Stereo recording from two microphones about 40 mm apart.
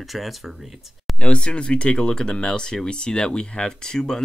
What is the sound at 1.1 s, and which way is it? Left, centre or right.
Speech, left.